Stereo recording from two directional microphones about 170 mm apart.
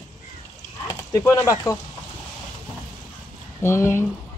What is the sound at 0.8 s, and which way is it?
Speech, 20° left (ahead or behind).